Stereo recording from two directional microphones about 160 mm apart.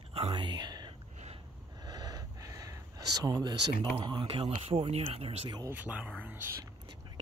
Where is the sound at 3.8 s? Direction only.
30° right (ahead or behind).